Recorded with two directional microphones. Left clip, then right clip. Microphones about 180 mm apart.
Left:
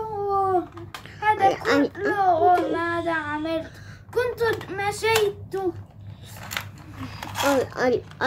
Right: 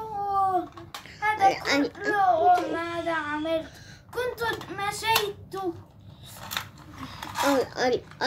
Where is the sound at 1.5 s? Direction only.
45° left (ahead or behind).